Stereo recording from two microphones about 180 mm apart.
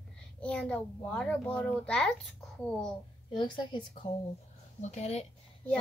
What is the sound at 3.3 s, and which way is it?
Speech, 25° left (ahead or behind).